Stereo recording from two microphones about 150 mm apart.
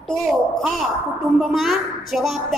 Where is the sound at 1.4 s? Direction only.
Centre (ahead or behind).